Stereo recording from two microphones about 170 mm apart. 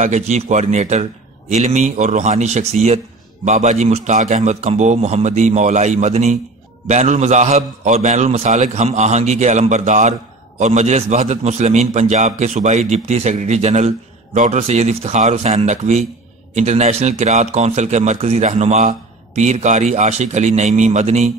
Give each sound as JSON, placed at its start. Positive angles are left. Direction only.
{"t": 0.0, "sound": "a man's voice", "side_deg": -40}